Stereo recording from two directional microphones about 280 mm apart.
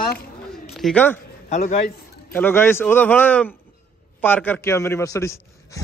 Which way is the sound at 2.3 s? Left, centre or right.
Centre.